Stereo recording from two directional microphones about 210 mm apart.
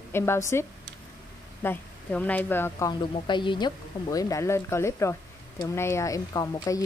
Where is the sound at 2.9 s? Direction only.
20° left (ahead or behind).